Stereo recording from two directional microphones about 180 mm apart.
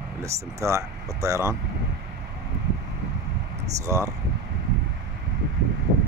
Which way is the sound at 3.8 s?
15° right (ahead or behind).